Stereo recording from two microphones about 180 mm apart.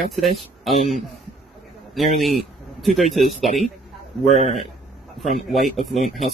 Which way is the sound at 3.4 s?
40° right (ahead or behind).